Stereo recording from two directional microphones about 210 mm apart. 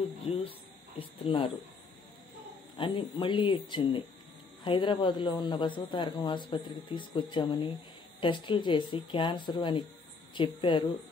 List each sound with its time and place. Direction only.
0.3 s speech: 25° left (ahead or behind)
2.8 s speech: 25° left (ahead or behind)